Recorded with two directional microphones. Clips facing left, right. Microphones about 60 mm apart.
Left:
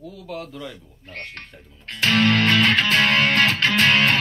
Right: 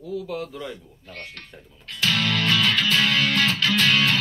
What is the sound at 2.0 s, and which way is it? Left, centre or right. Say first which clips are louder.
Music: left 5 dB; left.